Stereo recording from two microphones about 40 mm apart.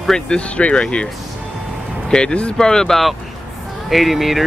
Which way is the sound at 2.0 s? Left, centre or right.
Left.